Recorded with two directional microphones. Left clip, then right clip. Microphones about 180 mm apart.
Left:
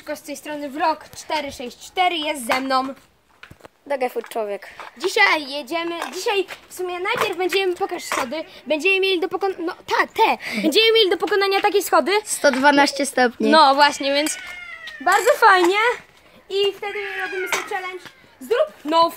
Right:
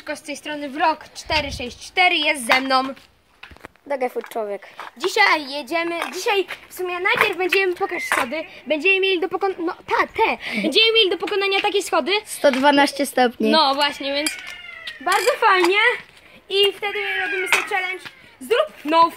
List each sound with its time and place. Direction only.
0.0 s a woman's voice: 5° left (ahead or behind)
3.9 s a woman's voice: 5° right (ahead or behind)
6.4 s a woman's voice: 10° left (ahead or behind)
9.4 s speech: 10° right (ahead or behind)
10.1 s speech: 45° left (ahead or behind)
10.4 s a woman's voice: 5° left (ahead or behind)
10.7 s a woman's voice: 40° left (ahead or behind)
12.3 s a woman's voice: centre (ahead or behind)
13.6 s speech: 30° left (ahead or behind)
15.0 s speech: 60° left (ahead or behind)
16.4 s a woman's voice: 5° right (ahead or behind)